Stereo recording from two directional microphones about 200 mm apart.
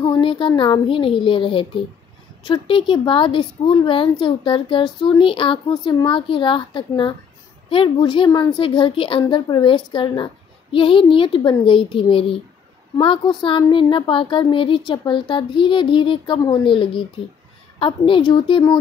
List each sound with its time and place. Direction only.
0.1 s a woman's voice: 25° left (ahead or behind)